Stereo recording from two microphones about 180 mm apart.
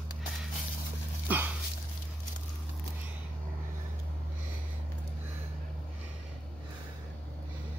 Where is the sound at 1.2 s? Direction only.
10° right (ahead or behind).